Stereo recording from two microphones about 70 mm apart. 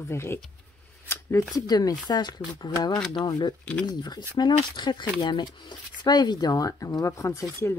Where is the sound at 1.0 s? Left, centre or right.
Left.